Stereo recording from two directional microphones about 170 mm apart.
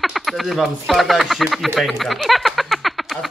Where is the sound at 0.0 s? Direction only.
Centre (ahead or behind).